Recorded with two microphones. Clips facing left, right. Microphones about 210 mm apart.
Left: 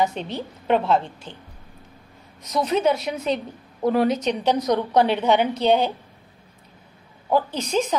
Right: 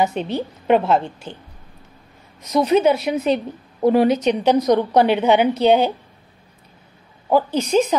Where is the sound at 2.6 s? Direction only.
5° right (ahead or behind).